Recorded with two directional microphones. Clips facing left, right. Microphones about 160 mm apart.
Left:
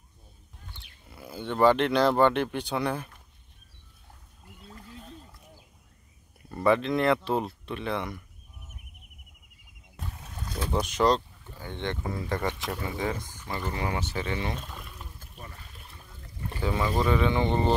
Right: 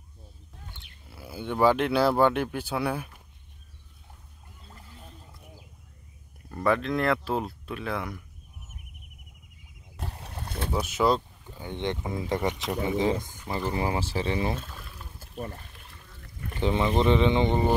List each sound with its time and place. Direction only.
1.0 s speech: 5° right (ahead or behind)
6.5 s speech: centre (ahead or behind)
9.9 s boat: 70° right (ahead or behind)
10.3 s boat: 60° right (ahead or behind)
10.7 s speech: 5° right (ahead or behind); by 14.5 s 30° right (ahead or behind)
15.3 s speech: 40° right (ahead or behind)
16.5 s speech: 25° right (ahead or behind)